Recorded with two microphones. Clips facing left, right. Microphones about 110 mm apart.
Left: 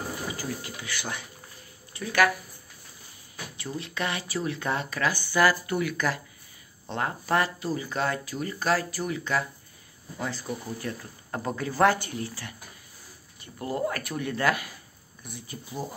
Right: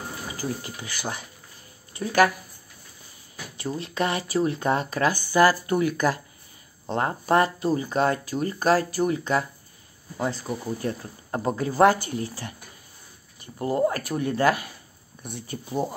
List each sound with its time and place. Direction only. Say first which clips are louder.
0.4 s speech: right 3 dB; 40° right (ahead or behind)
3.5 s speech: right 6 dB; 40° right (ahead or behind)
13.6 s speech: right 6 dB; 30° right (ahead or behind)
15.2 s speech: right 6 dB; 65° right (ahead or behind)